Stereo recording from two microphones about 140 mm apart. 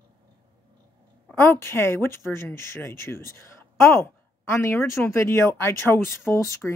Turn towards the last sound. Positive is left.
turn(degrees=20)  # may be behind; listen again after turning